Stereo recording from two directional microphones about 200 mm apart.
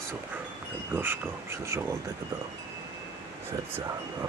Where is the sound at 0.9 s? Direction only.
10° right (ahead or behind).